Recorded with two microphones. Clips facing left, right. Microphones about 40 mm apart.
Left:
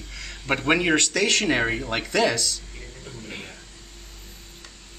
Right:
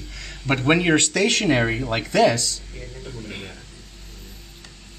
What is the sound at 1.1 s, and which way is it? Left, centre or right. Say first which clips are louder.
Speech: right 2 dB; right.